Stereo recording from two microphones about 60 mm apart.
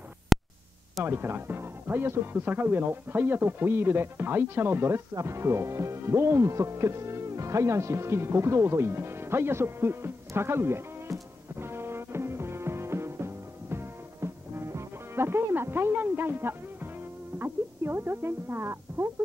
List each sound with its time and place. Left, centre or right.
0.3 s a sound: centre
1.0 s speech: right
5.1 s music: right
15.9 s speech: right